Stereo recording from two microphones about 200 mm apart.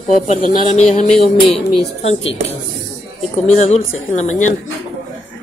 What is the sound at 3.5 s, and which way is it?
Speech, 35° left (ahead or behind).